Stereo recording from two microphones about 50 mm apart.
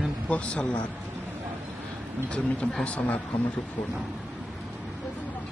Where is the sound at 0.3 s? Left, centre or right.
Left.